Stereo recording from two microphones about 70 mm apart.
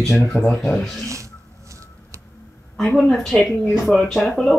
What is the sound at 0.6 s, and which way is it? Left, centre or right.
Speech, centre.